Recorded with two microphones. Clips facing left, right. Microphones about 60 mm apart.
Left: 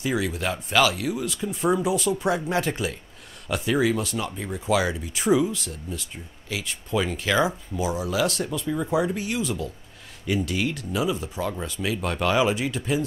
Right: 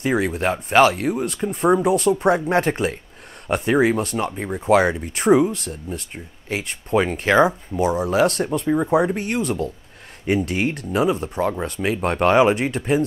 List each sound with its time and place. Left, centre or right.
0.0 s speech: right
11.8 s speech: right